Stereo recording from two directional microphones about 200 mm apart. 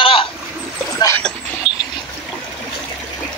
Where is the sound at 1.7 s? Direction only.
90° right.